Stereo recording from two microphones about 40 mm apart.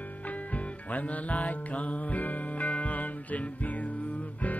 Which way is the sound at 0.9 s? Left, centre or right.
Left.